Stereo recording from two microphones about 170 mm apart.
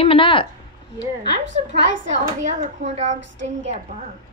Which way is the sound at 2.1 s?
45° right (ahead or behind).